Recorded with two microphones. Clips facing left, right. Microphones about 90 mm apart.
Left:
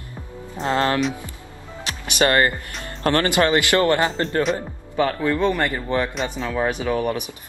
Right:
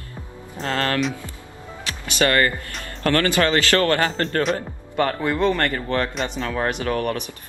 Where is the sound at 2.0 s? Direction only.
20° left (ahead or behind).